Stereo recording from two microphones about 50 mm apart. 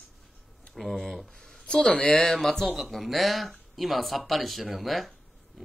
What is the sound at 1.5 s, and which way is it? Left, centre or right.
Speech, centre.